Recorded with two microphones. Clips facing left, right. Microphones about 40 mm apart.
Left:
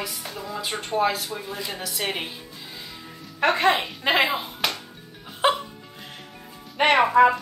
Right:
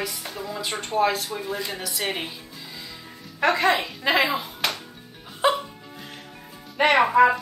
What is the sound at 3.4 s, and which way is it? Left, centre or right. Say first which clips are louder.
A woman's voice: even; left.